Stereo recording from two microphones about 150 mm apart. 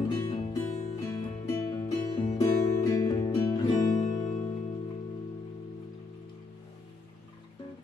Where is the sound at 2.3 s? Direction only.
25° left (ahead or behind).